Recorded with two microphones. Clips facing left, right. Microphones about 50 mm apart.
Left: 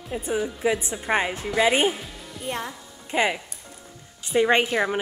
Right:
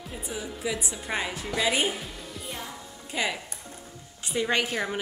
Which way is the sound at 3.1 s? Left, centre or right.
Left.